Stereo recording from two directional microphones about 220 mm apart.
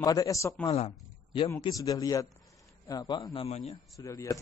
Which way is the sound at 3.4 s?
30° left (ahead or behind).